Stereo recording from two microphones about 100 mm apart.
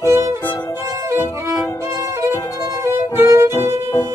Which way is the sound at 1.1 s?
25° right (ahead or behind).